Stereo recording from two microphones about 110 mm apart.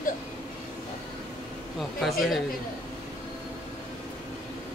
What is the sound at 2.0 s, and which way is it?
Speech, centre (ahead or behind).